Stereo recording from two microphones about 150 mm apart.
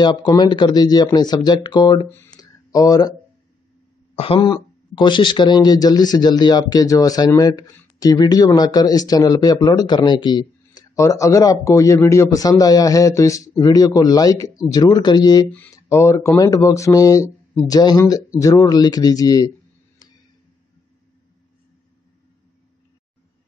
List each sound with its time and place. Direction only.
0.0 s speech: 30° left (ahead or behind)
2.0 s speech: 15° left (ahead or behind)
2.3 s a sound: 25° left (ahead or behind)
4.2 s speech: 35° left (ahead or behind)